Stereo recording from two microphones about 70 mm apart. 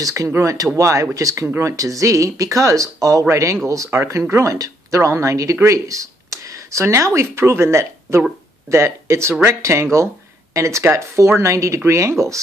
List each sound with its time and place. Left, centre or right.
0.0 s speech: right
3.9 s speech: right